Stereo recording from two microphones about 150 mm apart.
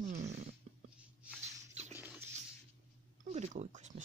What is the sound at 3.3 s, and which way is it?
Speech, 50° right (ahead or behind).